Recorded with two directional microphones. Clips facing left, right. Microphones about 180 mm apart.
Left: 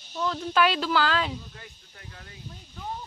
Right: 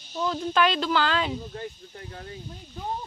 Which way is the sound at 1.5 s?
35° right (ahead or behind).